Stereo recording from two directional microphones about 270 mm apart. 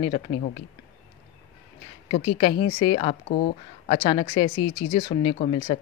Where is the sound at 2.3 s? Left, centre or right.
Centre.